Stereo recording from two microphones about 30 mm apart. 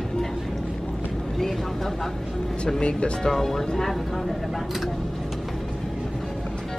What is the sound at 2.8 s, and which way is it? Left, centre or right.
Speech, left.